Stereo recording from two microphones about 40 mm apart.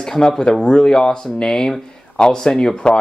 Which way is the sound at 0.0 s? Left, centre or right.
Centre.